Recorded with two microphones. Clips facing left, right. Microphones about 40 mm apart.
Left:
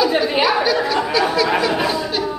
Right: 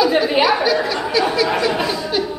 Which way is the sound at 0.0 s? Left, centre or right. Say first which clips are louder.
Right 1 dB; centre.